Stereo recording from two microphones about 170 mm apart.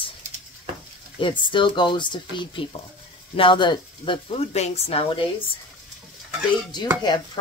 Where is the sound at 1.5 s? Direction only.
30° left (ahead or behind).